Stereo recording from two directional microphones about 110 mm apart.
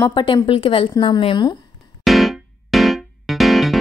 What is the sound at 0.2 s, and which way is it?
A woman's voice, 50° left (ahead or behind).